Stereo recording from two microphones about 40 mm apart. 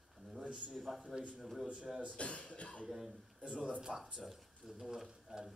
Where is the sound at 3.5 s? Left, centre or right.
Right.